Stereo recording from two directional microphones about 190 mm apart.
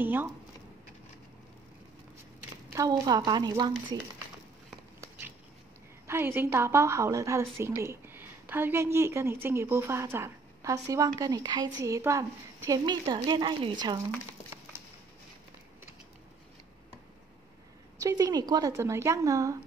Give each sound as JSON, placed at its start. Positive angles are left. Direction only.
{"t": 0.0, "sound": "a woman's voice", "side_deg": -10}
{"t": 2.7, "sound": "a woman's voice", "side_deg": -15}
{"t": 6.0, "sound": "a woman's voice", "side_deg": -10}
{"t": 17.9, "sound": "a woman's voice", "side_deg": -20}